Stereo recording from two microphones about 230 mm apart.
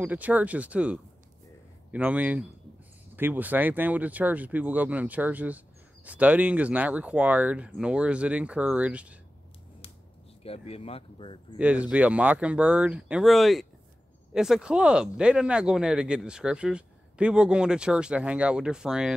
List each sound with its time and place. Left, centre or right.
0.0 s speech: centre
10.4 s speech: left
11.5 s speech: centre